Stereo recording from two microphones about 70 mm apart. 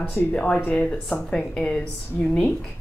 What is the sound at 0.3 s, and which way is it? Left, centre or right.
A woman's voice, centre.